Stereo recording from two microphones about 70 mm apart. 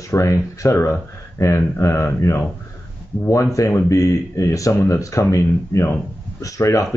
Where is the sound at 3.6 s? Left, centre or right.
Left.